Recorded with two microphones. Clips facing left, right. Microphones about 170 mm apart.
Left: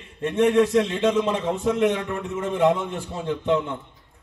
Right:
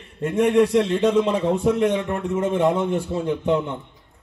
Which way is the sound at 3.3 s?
20° right (ahead or behind).